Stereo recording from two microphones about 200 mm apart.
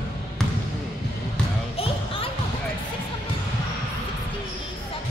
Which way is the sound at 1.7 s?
30° left (ahead or behind).